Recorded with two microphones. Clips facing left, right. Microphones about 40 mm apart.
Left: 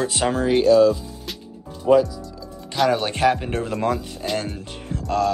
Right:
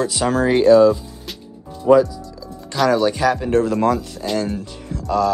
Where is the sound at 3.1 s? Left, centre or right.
Left.